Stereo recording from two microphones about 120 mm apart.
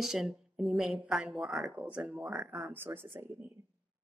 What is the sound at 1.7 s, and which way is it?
Speech, 10° right (ahead or behind).